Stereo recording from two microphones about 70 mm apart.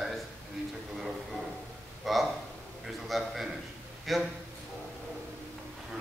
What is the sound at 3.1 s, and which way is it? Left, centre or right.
A man's voice, centre.